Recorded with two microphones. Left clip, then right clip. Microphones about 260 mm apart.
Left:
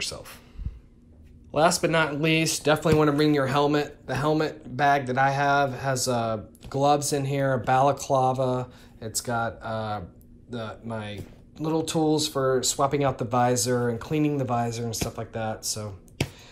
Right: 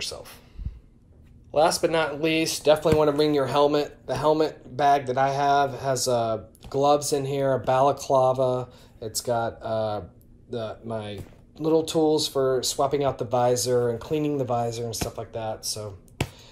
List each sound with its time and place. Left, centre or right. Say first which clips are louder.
0.0 s speech: left 1 dB; centre
1.5 s speech: right 1 dB; centre
3.8 s speech: right 3 dB; right
4.7 s speech: right 1 dB; centre
11.9 s speech: right 2 dB; right
14.1 s speech: left 1 dB; centre